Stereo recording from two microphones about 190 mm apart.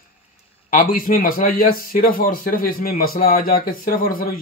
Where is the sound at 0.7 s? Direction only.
45° left (ahead or behind).